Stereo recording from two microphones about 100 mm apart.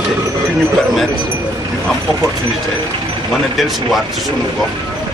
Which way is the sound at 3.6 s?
Centre (ahead or behind).